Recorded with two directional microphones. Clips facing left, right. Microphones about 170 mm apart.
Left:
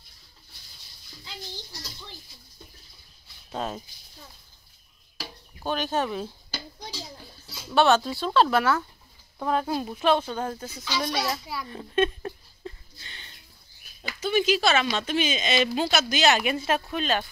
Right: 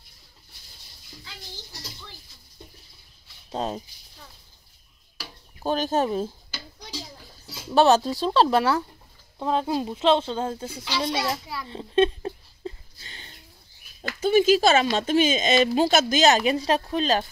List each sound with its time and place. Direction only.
3.5 s speech: 30° right (ahead or behind)
5.6 s speech: 40° right (ahead or behind)
7.7 s speech: 35° right (ahead or behind)
9.4 s a child's voice: 20° right (ahead or behind)
11.6 s a sound: 25° right (ahead or behind)
13.1 s livestock: 40° right (ahead or behind)
14.2 s speech: 45° right (ahead or behind)